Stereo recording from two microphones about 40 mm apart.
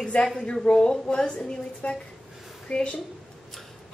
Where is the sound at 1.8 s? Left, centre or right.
Left.